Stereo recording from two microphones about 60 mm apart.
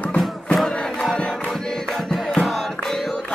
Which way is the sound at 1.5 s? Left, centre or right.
Centre.